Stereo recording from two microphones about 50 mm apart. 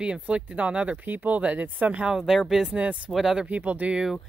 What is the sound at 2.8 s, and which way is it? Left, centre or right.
Speech, right.